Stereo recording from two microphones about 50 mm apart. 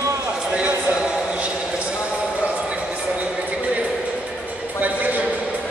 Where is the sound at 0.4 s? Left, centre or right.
Right.